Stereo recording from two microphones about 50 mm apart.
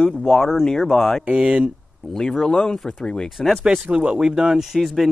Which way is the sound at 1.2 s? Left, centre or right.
Right.